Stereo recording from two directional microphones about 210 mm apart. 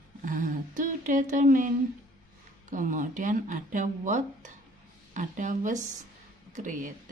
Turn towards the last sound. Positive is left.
turn(degrees=-35)  # may be behind; listen again after turning